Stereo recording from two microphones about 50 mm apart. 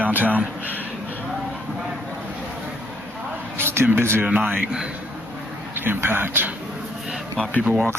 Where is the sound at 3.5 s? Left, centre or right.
Right.